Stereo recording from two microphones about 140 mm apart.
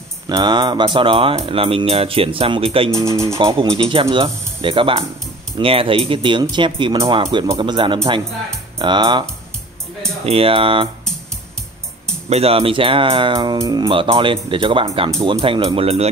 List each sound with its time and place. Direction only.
0.3 s speech: 35° right (ahead or behind)
10.2 s speech: 40° right (ahead or behind)
12.3 s speech: 45° right (ahead or behind)